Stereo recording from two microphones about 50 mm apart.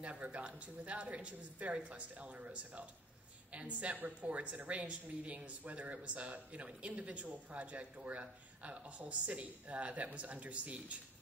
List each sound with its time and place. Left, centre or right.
0.0 s a woman's voice: right